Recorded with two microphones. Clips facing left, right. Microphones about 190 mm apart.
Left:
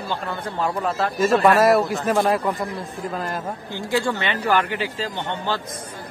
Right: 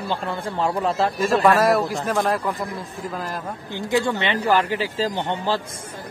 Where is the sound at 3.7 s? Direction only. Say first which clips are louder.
Right 2 dB; 20° right (ahead or behind).